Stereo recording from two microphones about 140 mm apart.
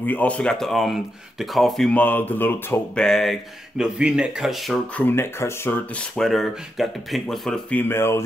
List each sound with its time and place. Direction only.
0.0 s speech: 10° left (ahead or behind)
3.1 s speech: centre (ahead or behind)
7.9 s speech: 15° left (ahead or behind)